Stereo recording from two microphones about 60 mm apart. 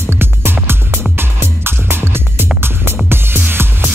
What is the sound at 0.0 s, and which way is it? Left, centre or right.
Music, right.